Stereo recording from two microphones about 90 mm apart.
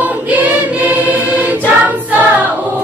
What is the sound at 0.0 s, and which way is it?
Choir, 20° right (ahead or behind).